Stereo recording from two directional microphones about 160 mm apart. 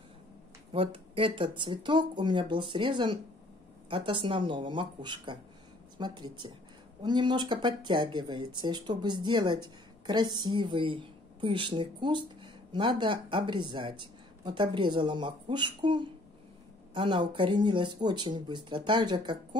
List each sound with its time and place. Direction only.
0.7 s speech: 35° right (ahead or behind)